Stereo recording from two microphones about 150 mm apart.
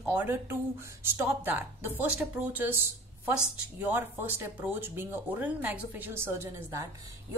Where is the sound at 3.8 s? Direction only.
15° right (ahead or behind).